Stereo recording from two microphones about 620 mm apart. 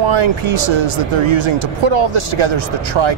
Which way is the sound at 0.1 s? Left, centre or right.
Right.